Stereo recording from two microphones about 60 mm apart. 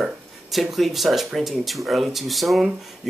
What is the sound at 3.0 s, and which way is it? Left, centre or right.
Bee, centre.